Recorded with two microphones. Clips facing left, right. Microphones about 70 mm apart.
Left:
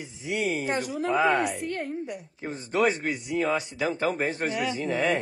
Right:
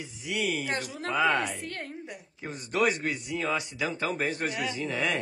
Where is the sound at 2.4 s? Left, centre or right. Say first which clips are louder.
Left 2 dB; left.